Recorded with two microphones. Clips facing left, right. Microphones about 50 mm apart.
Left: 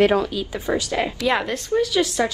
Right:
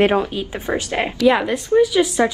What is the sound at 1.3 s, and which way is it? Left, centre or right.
Speech, centre.